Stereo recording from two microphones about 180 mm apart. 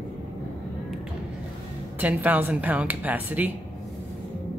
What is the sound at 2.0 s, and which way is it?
Speech, 10° right (ahead or behind).